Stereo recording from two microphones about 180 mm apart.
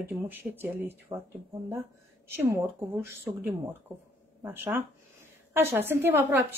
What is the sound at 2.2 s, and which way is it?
A woman's voice, 15° right (ahead or behind).